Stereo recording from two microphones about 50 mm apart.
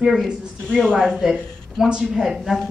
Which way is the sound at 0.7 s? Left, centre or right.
Centre.